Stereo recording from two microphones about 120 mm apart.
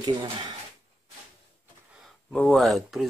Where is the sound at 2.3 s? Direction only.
Centre (ahead or behind).